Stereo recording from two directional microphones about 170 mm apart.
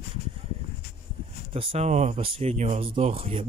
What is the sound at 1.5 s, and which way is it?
Speech, 30° right (ahead or behind).